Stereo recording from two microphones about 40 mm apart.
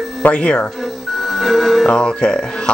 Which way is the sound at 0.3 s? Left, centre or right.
Left.